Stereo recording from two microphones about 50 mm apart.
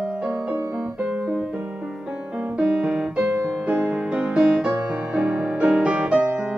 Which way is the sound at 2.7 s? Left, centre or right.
Right.